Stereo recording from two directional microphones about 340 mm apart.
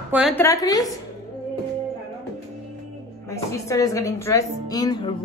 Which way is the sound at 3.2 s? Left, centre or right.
Centre.